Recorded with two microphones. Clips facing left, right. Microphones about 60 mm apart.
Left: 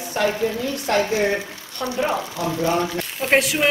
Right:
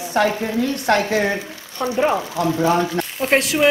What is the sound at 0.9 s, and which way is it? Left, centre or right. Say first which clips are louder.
Speech: right 2 dB; right.